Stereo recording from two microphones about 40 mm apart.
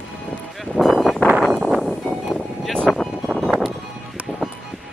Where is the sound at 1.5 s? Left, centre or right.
Centre.